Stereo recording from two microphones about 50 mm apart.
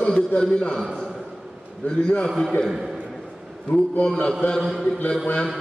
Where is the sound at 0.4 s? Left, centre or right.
Centre.